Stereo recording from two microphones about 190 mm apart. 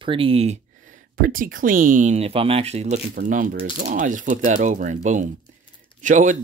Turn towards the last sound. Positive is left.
turn(degrees=-40)  # may be behind; listen again after turning